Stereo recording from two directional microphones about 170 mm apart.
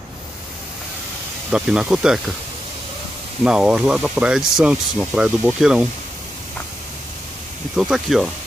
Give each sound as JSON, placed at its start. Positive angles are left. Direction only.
{"t": 1.5, "sound": "speech", "side_deg": -5}
{"t": 3.4, "sound": "speech", "side_deg": -5}
{"t": 7.7, "sound": "speech", "side_deg": -5}